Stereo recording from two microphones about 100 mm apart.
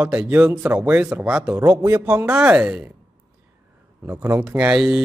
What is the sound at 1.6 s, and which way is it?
Speech, 25° right (ahead or behind).